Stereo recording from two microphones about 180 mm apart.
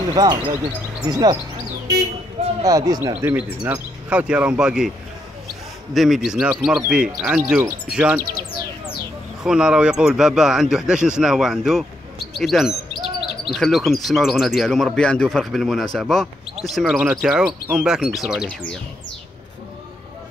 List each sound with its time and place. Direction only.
0.1 s speech: 20° right (ahead or behind)
2.6 s speech: 20° right (ahead or behind); by 4.9 s 5° right (ahead or behind)
5.9 s speech: centre (ahead or behind)
9.4 s speech: 5° right (ahead or behind)